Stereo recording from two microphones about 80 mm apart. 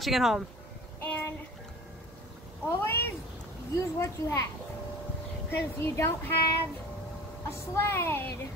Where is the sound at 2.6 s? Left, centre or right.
Left.